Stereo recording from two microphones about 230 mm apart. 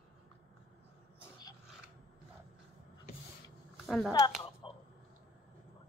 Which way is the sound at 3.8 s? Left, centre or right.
Centre.